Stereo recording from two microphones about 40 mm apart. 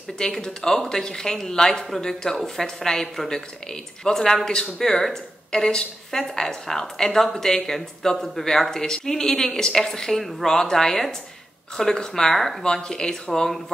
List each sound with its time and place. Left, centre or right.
0.2 s speech: centre